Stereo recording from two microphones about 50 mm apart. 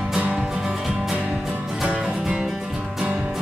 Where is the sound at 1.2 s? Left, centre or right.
Right.